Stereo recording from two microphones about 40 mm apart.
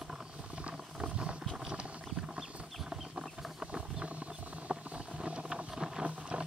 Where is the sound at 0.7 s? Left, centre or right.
Right.